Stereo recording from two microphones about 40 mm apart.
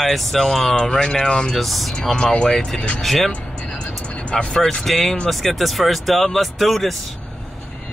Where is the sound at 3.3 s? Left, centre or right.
Left.